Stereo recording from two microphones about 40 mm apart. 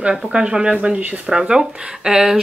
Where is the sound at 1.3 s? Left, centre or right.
Centre.